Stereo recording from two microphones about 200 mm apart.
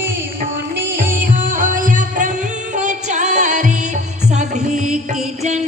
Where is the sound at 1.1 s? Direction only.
40° right (ahead or behind).